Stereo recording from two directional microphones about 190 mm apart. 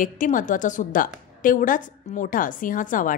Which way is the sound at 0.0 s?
45° left (ahead or behind).